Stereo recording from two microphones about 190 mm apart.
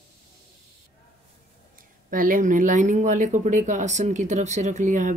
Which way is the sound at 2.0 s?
45° right (ahead or behind).